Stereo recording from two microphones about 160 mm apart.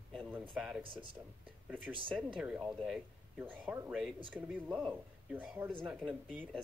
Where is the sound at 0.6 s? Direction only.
5° right (ahead or behind).